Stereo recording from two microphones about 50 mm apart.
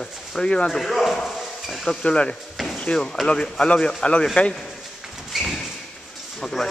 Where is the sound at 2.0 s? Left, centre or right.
Centre.